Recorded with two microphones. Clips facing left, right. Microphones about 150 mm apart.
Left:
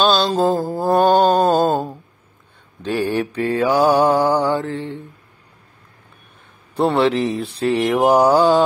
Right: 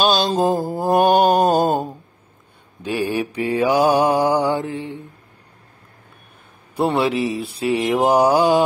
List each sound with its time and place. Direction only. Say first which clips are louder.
0.0 s mantra: left 1 dB; 15° right (ahead or behind)
2.8 s mantra: left 2 dB; 10° right (ahead or behind)
6.7 s mantra: left 2 dB; 10° right (ahead or behind)